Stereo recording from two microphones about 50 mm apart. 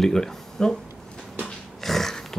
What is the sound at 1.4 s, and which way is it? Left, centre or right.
Pig, centre.